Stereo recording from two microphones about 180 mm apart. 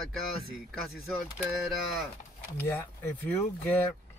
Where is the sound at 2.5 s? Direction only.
15° left (ahead or behind).